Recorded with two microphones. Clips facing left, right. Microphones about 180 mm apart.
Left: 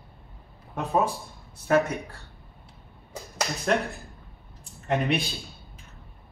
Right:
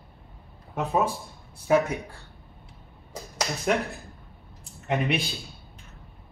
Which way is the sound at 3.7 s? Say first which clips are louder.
Left 2 dB; centre (ahead or behind).